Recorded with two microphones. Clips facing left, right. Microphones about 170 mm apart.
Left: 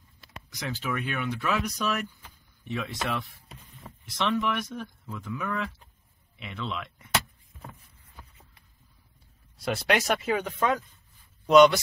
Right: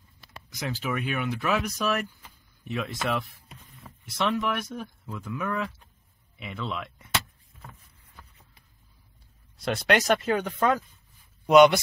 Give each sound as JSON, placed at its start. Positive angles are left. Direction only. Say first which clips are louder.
{"t": 0.6, "sound": "speech", "louder": "right 2 dB", "side_deg": -5}
{"t": 3.9, "sound": "a sound", "louder": "left 3 dB", "side_deg": 30}
{"t": 4.2, "sound": "speech", "louder": "even", "side_deg": -5}
{"t": 9.7, "sound": "speech", "louder": "right 2 dB", "side_deg": 5}
{"t": 11.4, "sound": "speech", "louder": "right 1 dB", "side_deg": -10}